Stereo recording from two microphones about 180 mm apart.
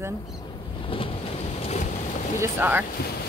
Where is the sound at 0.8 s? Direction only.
30° left (ahead or behind).